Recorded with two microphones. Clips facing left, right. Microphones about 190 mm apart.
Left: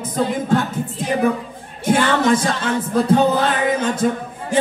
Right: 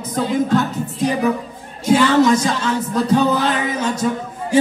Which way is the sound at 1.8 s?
55° left (ahead or behind).